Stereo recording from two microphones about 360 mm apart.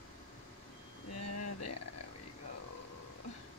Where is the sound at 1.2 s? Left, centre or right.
Left.